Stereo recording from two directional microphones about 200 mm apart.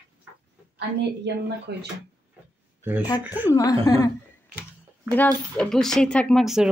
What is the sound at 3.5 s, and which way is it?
Speech, 15° left (ahead or behind).